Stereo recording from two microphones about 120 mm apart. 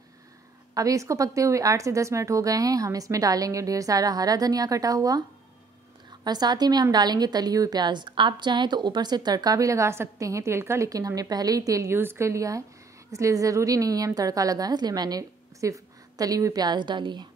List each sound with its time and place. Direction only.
0.7 s a woman's voice: 25° right (ahead or behind)
6.2 s a woman's voice: 35° right (ahead or behind)